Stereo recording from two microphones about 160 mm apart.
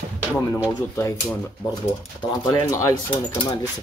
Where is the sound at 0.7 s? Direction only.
15° left (ahead or behind).